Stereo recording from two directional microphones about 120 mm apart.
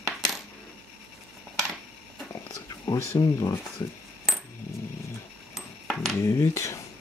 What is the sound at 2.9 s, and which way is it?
Speech, 30° left (ahead or behind).